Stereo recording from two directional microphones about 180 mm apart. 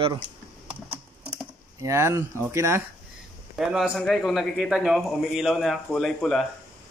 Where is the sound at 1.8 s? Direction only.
15° right (ahead or behind).